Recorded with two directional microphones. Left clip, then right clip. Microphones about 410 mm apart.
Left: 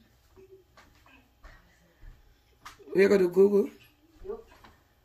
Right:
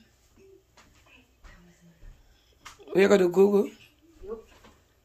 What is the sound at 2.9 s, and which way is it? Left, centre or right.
Speech, centre.